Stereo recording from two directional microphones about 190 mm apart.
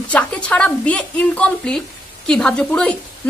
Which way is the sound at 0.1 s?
5° left (ahead or behind).